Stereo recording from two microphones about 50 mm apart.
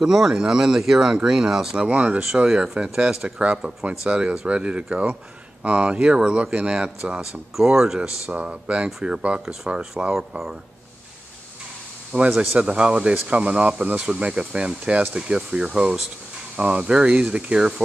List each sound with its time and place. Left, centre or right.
0.0 s speech: centre
1.8 s speech: right; by 8.1 s centre
8.3 s speech: right
10.1 s speech: centre
12.4 s speech: right